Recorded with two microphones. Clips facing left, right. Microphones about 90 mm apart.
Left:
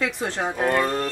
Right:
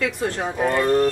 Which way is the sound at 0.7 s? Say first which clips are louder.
Right 5 dB; 5° right (ahead or behind).